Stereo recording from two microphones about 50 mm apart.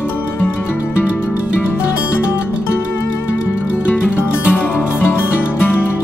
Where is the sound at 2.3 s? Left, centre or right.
Left.